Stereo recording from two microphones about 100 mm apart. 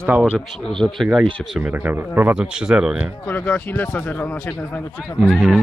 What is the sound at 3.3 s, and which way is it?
Speech, 20° left (ahead or behind).